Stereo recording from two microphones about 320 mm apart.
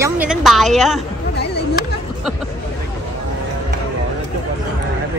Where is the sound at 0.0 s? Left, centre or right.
Centre.